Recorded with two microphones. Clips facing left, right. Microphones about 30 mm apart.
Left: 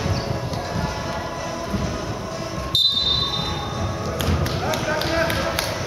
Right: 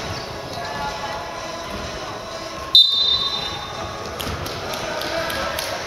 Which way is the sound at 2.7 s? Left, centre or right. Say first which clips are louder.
Right 6 dB; right.